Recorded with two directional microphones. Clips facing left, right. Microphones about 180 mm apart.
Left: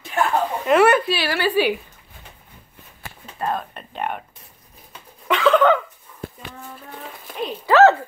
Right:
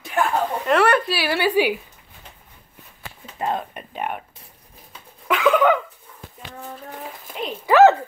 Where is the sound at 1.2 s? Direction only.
15° right (ahead or behind).